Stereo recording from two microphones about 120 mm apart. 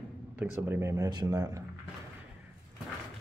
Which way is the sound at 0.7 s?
25° right (ahead or behind).